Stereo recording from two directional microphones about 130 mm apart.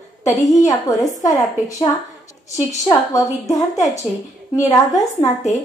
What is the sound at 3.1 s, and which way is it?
A woman's voice, 25° left (ahead or behind).